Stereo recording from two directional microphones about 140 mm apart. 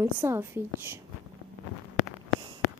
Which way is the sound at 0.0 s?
15° right (ahead or behind).